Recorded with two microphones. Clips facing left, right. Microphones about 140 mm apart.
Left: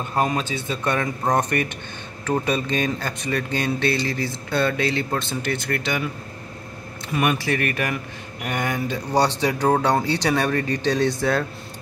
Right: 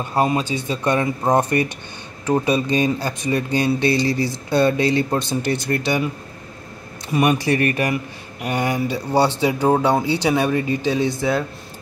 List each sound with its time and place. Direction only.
0.1 s speech: 10° right (ahead or behind)
7.3 s speech: 20° right (ahead or behind); by 11.4 s 5° right (ahead or behind)